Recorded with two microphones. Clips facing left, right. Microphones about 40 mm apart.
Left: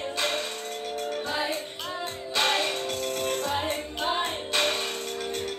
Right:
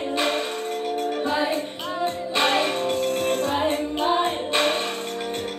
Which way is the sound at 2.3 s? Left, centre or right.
Centre.